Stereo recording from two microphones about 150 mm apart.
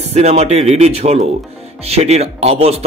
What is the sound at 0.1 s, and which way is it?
A man's voice, 45° right (ahead or behind).